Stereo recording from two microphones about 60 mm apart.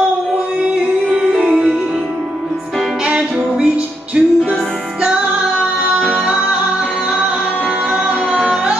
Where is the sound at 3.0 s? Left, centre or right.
Centre.